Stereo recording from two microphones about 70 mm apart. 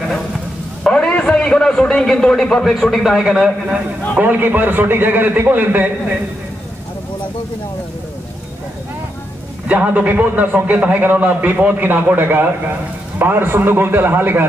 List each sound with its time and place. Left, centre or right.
0.8 s a man's voice: centre
4.2 s a man's voice: right
9.7 s a man's voice: centre